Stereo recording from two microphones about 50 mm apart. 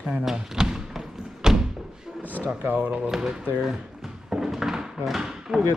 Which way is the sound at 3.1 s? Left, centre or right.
Centre.